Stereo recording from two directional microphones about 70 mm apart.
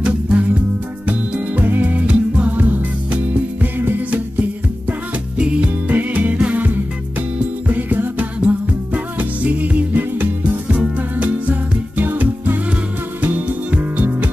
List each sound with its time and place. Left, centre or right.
0.0 s music: centre